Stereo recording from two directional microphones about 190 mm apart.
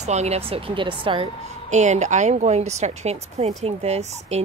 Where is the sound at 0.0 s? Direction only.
35° right (ahead or behind).